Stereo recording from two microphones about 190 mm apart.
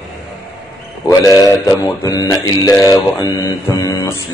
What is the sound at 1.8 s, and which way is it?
Mantra, 20° left (ahead or behind).